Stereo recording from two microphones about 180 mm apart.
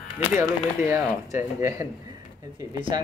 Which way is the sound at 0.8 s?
15° right (ahead or behind).